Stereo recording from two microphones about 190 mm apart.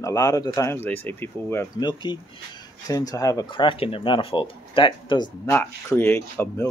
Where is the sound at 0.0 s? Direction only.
20° left (ahead or behind).